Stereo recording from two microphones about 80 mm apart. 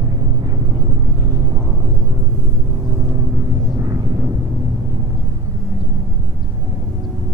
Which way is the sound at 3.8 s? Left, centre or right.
Right.